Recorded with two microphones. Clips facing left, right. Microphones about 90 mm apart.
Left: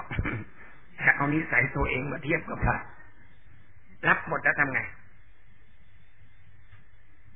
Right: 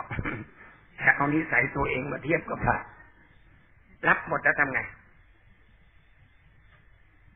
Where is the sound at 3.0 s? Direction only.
35° right (ahead or behind).